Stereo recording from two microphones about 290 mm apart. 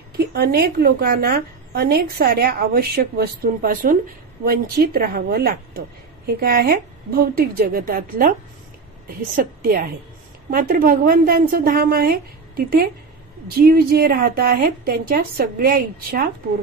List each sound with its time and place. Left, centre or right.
0.3 s a woman's voice: right